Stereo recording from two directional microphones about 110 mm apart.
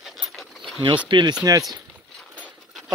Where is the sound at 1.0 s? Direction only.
45° right (ahead or behind).